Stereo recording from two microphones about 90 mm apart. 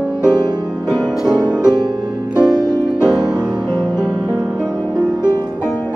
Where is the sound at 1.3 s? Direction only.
50° right (ahead or behind).